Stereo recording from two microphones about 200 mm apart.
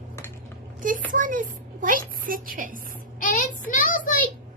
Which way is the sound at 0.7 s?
40° right (ahead or behind).